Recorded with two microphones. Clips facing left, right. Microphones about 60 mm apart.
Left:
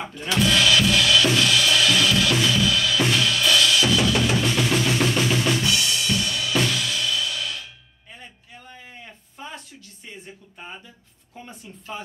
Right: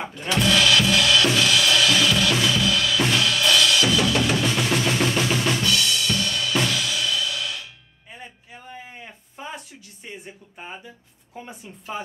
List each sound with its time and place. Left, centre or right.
0.4 s drum kit: centre
5.6 s drum: centre
6.0 s cymbal: centre
8.1 s a sound: centre
11.3 s speech: centre